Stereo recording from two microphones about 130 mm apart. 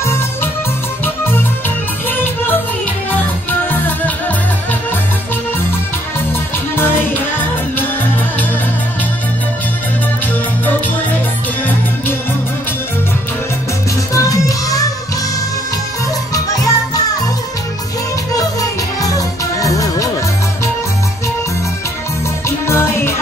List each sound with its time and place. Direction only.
0.0 s music: 20° left (ahead or behind)
6.7 s music: 15° left (ahead or behind)
14.1 s music: 25° left (ahead or behind)
16.5 s music: 30° left (ahead or behind)
18.3 s music: 25° left (ahead or behind)
22.7 s music: 20° left (ahead or behind)